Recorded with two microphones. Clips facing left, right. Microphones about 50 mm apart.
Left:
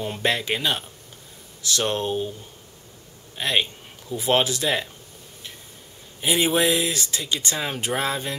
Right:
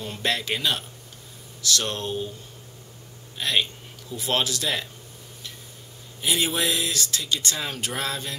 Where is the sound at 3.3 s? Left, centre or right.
Centre.